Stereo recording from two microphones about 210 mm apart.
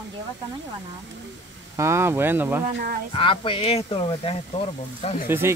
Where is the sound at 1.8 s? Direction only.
10° right (ahead or behind).